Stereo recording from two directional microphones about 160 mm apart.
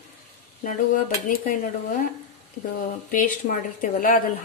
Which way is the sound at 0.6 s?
60° left (ahead or behind).